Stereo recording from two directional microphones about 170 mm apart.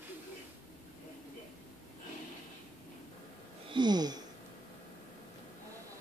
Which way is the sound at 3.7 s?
25° right (ahead or behind).